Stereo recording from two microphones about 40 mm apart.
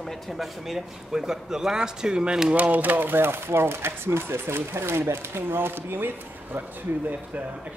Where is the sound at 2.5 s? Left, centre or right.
Right.